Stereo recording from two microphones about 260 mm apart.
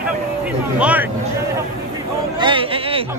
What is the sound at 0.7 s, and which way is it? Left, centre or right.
Speech, centre.